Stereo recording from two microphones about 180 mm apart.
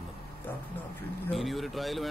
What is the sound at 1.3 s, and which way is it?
Speech, centre (ahead or behind).